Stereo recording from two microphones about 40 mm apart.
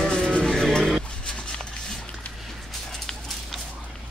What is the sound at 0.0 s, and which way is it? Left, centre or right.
Vehicle, centre.